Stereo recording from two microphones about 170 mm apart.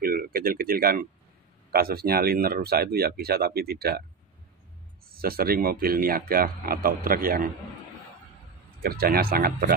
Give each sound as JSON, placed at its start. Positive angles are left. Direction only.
{"t": 0.0, "sound": "speech", "side_deg": -60}
{"t": 5.1, "sound": "speech", "side_deg": -60}
{"t": 8.8, "sound": "speech", "side_deg": -60}